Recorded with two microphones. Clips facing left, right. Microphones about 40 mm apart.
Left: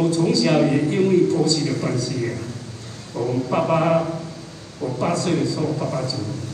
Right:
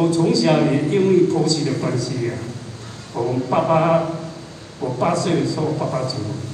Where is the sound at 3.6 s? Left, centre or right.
Centre.